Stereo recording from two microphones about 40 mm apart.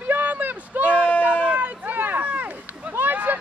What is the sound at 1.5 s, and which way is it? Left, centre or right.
Run, right.